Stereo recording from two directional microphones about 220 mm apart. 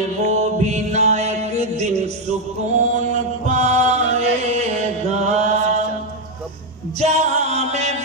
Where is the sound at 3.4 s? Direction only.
30° right (ahead or behind).